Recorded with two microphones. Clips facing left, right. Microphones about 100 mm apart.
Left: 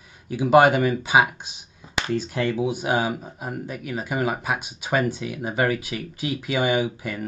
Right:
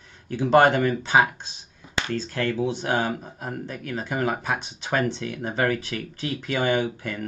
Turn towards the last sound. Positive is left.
turn(degrees=10)  # may be behind; listen again after turning